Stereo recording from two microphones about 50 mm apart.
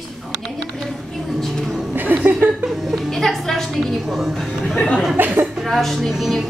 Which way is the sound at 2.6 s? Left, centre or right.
Centre.